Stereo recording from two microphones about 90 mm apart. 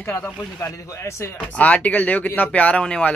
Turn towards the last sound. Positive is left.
turn(degrees=10)  # may be behind; listen again after turning